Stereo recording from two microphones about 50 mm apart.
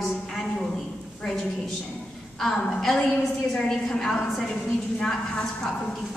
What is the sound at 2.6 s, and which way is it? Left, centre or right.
A woman's voice, centre.